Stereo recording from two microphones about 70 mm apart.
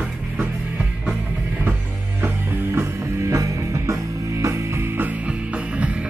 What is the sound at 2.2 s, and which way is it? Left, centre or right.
Music, right.